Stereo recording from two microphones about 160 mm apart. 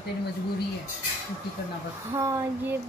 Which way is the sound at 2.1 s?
20° right (ahead or behind).